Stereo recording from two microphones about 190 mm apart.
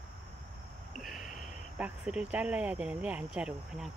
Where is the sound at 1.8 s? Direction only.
5° right (ahead or behind).